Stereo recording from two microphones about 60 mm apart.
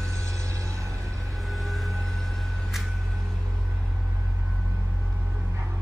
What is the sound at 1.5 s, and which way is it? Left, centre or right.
Vehicle, centre.